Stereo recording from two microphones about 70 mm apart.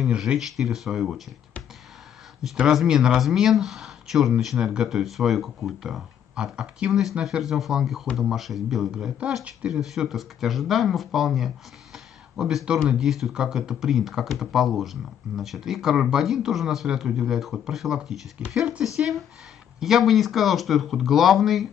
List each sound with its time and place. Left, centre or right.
0.2 s speech: centre
2.4 s speech: centre
6.9 s speech: centre
9.4 s speech: centre
9.7 s speech: centre
18.9 s speech: centre